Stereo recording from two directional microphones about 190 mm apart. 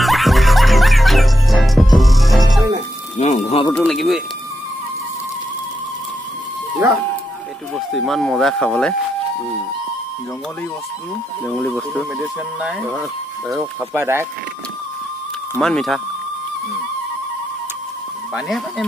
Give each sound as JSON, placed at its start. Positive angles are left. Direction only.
{"t": 0.0, "sound": "music", "side_deg": 0}
{"t": 3.2, "sound": "a sound", "side_deg": 35}
{"t": 3.7, "sound": "speech", "side_deg": 5}
{"t": 7.7, "sound": "speech", "side_deg": 0}
{"t": 11.4, "sound": "speech", "side_deg": 0}
{"t": 15.6, "sound": "speech", "side_deg": 0}
{"t": 18.3, "sound": "speech", "side_deg": 0}